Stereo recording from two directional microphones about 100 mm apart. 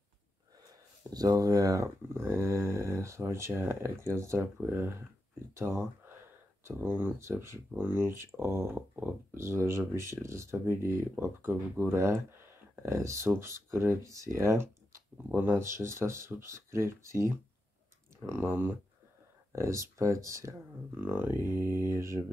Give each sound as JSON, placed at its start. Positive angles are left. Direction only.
{"t": 0.7, "sound": "speech", "side_deg": -40}
{"t": 15.2, "sound": "speech", "side_deg": -20}